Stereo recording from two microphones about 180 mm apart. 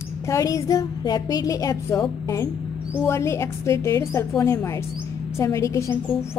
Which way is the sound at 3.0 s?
15° left (ahead or behind).